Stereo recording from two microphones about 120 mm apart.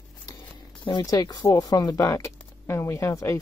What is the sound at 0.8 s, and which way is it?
Speech, 35° left (ahead or behind).